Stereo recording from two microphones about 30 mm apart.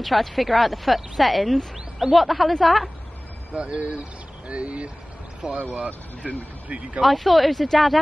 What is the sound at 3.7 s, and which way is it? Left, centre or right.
Speech, right.